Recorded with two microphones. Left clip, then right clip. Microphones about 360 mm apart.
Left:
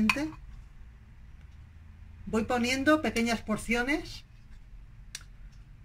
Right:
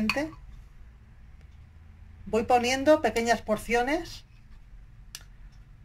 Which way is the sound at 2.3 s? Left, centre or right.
Centre.